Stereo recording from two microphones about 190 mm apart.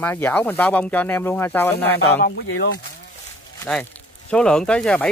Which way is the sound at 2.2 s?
60° left (ahead or behind).